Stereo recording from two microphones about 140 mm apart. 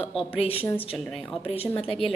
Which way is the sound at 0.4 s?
45° left (ahead or behind).